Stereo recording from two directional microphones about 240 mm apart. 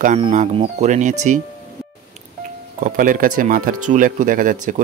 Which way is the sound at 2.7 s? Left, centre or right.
Right.